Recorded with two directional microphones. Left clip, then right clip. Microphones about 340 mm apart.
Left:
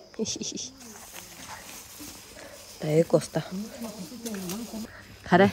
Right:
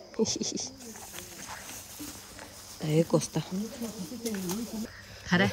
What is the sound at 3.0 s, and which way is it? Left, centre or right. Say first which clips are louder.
Speech: left 4 dB; centre.